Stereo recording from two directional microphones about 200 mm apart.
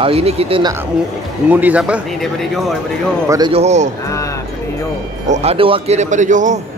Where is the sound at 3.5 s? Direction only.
35° right (ahead or behind).